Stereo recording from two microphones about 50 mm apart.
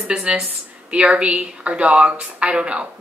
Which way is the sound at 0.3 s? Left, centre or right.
Right.